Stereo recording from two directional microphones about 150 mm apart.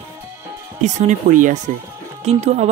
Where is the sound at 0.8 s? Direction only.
50° right (ahead or behind).